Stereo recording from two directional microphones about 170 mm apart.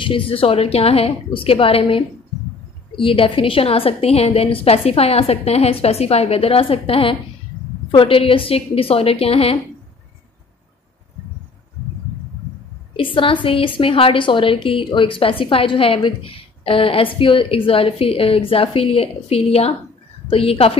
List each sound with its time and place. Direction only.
0.0 s a woman's voice: 30° left (ahead or behind)
12.9 s a woman's voice: 30° left (ahead or behind)